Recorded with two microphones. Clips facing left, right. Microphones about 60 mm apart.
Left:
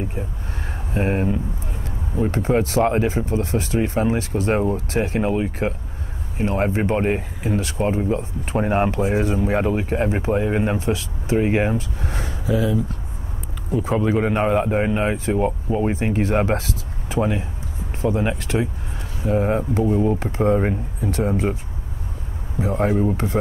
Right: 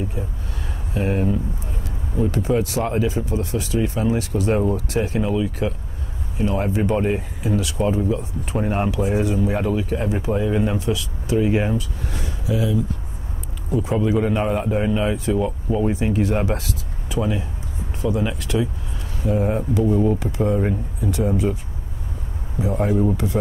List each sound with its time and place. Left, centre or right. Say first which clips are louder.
0.9 s a man's voice: even; left
13.7 s a man's voice: even; left
19.2 s a man's voice: left 1 dB; left
19.7 s a man's voice: even; left
22.6 s speech: left 1 dB; left